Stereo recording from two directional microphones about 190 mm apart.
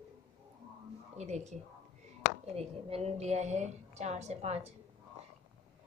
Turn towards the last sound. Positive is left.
turn(degrees=-35)  # may be behind; listen again after turning